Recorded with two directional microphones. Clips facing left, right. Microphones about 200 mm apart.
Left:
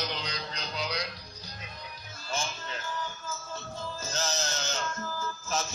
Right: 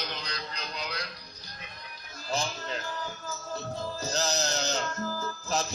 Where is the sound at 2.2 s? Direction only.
35° right (ahead or behind).